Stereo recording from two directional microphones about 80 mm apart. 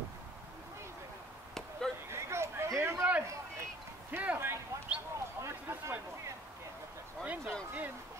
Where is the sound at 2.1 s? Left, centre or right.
Right.